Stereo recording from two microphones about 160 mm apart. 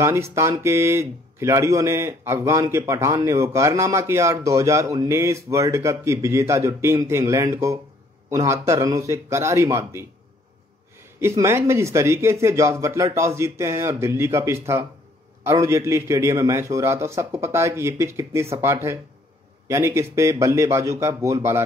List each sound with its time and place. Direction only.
0.0 s a man's voice: 15° right (ahead or behind)
11.1 s speech: 15° right (ahead or behind)